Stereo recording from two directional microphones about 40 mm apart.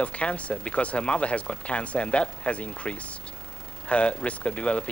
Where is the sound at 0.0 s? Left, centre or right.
Left.